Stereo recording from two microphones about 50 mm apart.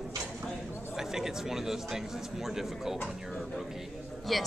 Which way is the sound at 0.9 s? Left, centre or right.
Centre.